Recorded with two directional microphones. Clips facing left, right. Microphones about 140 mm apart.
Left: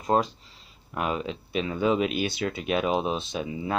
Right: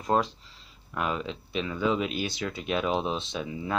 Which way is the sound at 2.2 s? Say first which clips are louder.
Left 4 dB; 55° left (ahead or behind).